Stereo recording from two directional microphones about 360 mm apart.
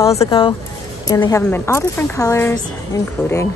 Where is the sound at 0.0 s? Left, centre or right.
Centre.